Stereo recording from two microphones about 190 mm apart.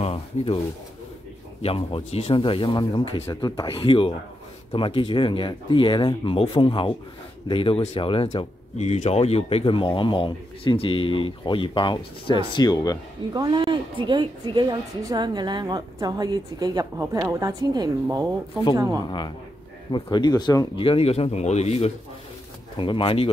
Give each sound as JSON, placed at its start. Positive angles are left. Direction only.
{"t": 0.0, "sound": "a sound", "side_deg": 30}
{"t": 1.6, "sound": "speech", "side_deg": 30}
{"t": 13.3, "sound": "a woman's voice", "side_deg": -20}
{"t": 19.0, "sound": "speech", "side_deg": 25}